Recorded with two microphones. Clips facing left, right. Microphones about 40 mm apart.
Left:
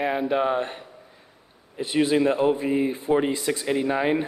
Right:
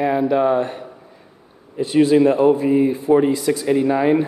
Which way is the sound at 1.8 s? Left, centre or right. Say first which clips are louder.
Right 7 dB; centre.